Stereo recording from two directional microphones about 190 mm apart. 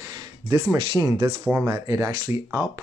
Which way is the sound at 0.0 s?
20° right (ahead or behind).